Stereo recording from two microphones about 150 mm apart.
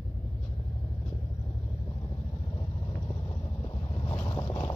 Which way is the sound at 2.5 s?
25° left (ahead or behind).